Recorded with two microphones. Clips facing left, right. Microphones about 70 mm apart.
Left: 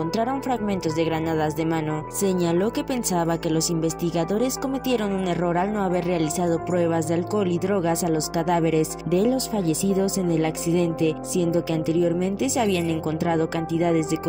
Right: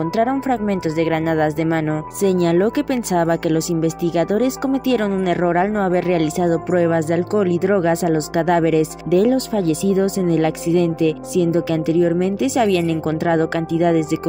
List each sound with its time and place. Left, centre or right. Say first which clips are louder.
0.2 s speech: right 8 dB; right
2.2 s speech: right 6 dB; right